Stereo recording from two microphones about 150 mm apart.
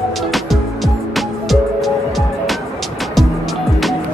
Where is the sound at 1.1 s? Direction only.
Centre (ahead or behind).